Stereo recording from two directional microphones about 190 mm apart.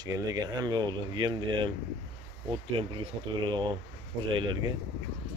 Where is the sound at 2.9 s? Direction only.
25° right (ahead or behind).